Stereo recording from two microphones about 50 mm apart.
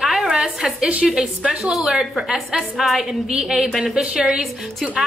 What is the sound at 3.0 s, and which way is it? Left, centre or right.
A woman's voice, centre.